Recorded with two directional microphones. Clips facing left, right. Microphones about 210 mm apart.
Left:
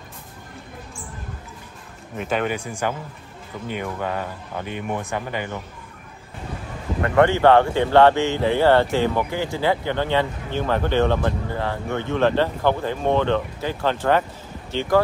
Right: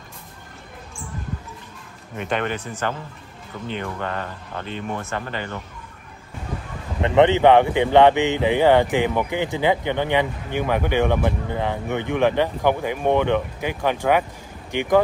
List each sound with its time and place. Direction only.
2.1 s speech: 5° left (ahead or behind)
7.1 s speech: 20° right (ahead or behind)